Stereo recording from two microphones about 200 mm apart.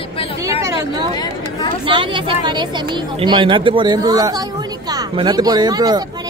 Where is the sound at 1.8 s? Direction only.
25° right (ahead or behind).